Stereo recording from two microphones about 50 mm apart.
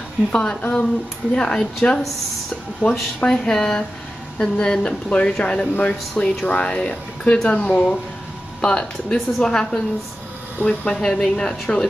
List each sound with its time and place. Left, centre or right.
0.3 s a woman's voice: left
10.6 s speech: left
10.9 s a woman's voice: centre